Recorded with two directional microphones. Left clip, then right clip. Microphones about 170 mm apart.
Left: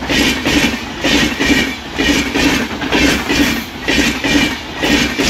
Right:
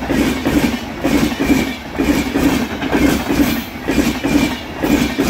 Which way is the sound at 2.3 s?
50° right (ahead or behind).